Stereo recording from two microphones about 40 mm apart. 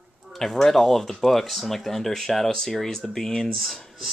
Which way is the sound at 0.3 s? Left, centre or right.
Centre.